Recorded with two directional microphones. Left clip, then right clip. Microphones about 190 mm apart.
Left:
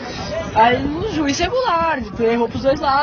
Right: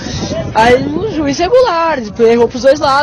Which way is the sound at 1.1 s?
40° right (ahead or behind).